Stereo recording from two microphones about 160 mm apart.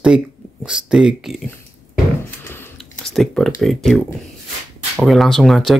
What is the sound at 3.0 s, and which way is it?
Speech, centre (ahead or behind).